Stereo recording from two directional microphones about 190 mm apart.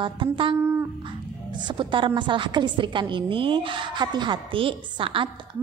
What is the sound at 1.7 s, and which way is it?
A woman's voice, 25° right (ahead or behind).